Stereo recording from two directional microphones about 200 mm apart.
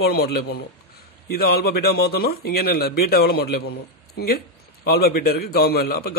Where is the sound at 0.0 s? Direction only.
50° left (ahead or behind).